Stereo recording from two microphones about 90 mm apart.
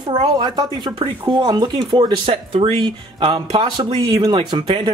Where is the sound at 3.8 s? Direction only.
60° right (ahead or behind).